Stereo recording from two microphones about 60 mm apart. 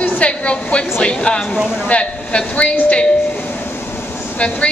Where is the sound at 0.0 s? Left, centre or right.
Left.